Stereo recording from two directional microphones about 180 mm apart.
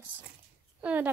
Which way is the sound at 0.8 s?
10° right (ahead or behind).